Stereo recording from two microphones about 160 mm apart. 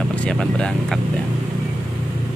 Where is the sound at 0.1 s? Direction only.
5° left (ahead or behind).